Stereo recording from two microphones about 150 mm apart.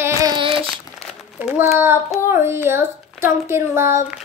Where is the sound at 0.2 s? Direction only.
30° right (ahead or behind).